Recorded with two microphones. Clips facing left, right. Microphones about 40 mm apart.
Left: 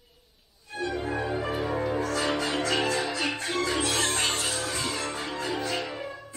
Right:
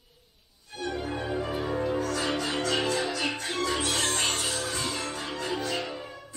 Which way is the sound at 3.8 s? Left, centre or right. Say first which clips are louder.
Left 2 dB; left.